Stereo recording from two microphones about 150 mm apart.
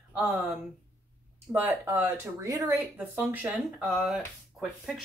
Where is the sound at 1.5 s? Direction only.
15° right (ahead or behind).